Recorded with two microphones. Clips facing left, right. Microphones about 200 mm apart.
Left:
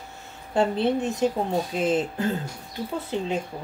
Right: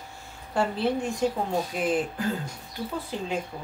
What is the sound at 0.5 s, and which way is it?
Speech, 20° left (ahead or behind).